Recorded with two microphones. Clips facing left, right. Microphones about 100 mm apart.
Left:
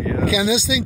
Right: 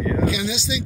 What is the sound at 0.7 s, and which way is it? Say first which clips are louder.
Speech: left 5 dB; 90° left.